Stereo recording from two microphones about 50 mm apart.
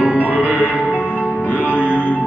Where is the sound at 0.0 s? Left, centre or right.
Right.